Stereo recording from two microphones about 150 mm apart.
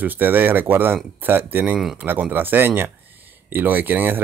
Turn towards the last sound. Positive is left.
turn(degrees=-15)  # may be behind; listen again after turning